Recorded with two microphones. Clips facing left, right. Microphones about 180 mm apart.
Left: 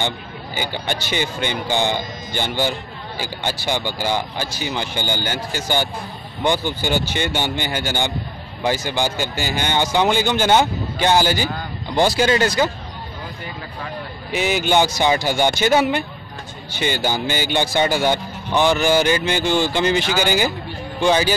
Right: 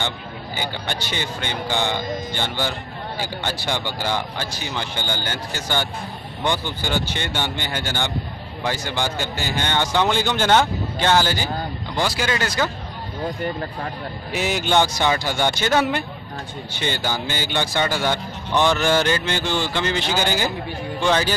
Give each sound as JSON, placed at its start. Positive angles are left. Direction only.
{"t": 0.6, "sound": "speech", "side_deg": 10}
{"t": 11.9, "sound": "a man's voice", "side_deg": 25}
{"t": 14.3, "sound": "a man's voice", "side_deg": 0}